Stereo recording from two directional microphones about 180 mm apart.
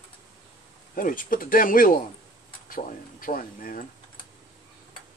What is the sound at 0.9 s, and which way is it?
Speech, 50° left (ahead or behind).